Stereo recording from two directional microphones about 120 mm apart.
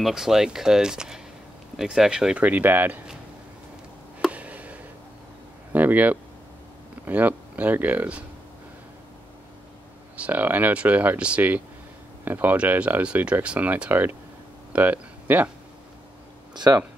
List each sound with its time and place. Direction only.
0.0 s speech: 5° right (ahead or behind)
4.3 s a sound: 10° right (ahead or behind)
5.7 s speech: 15° right (ahead or behind)
10.1 s speech: 15° right (ahead or behind)
16.5 s speech: 35° right (ahead or behind)